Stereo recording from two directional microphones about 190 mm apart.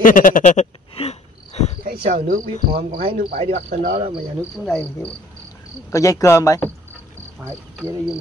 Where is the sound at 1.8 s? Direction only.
55° right (ahead or behind).